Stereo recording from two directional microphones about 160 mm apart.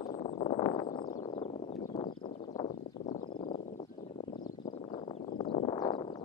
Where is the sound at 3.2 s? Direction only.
30° left (ahead or behind).